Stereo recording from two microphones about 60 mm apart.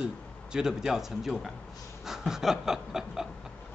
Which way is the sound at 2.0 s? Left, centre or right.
Centre.